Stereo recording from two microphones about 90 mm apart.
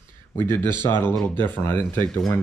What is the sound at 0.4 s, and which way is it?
Speech, 25° left (ahead or behind).